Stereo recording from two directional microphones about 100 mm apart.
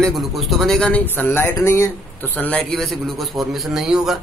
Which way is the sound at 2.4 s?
15° left (ahead or behind).